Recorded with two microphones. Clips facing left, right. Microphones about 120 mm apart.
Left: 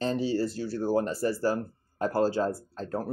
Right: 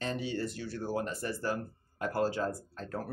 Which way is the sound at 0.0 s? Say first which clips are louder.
Left 7 dB; 30° left (ahead or behind).